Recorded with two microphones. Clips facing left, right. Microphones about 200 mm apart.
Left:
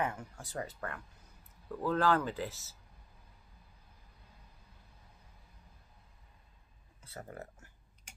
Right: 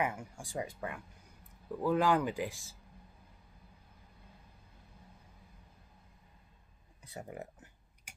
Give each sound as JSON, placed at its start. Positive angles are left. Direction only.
{"t": 0.0, "sound": "speech", "side_deg": -10}
{"t": 7.0, "sound": "clicking", "side_deg": -15}